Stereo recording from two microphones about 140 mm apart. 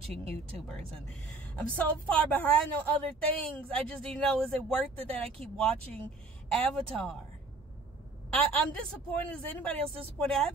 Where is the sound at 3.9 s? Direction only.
5° left (ahead or behind).